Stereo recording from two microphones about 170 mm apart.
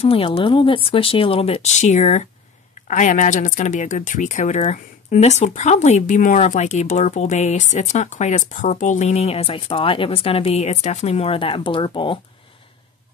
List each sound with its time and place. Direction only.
0.0 s speech: 35° left (ahead or behind)